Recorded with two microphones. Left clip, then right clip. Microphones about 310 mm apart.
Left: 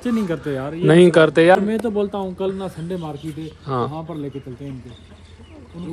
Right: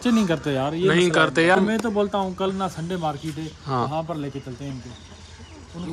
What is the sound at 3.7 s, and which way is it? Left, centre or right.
Speech, centre.